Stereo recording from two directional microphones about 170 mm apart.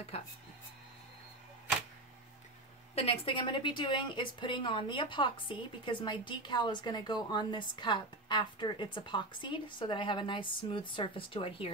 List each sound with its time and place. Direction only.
2.9 s a woman's voice: 35° left (ahead or behind)